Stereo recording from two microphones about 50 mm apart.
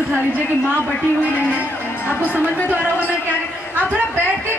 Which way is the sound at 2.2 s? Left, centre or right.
Left.